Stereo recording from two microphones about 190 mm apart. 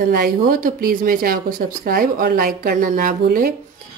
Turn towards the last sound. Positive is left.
turn(degrees=-50)  # may be behind; listen again after turning